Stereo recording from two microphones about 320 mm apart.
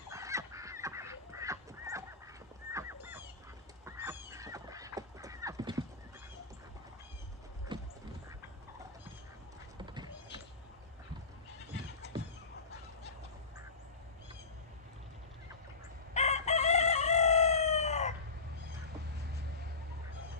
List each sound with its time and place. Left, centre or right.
0.1 s goose: centre
3.8 s a sound: centre
7.7 s horse: centre
16.1 s chicken: left